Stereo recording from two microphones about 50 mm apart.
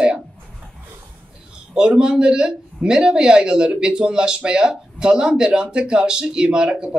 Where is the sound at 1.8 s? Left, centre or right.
Centre.